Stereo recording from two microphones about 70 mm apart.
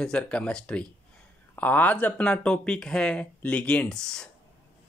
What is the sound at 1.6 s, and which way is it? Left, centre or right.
Speech, left.